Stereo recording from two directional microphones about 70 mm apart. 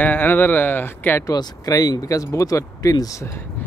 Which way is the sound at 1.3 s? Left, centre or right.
Left.